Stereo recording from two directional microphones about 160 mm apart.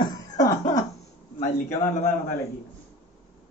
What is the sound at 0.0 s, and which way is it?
Cough, 25° left (ahead or behind).